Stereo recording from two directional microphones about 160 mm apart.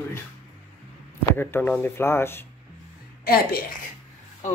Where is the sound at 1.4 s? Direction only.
10° left (ahead or behind).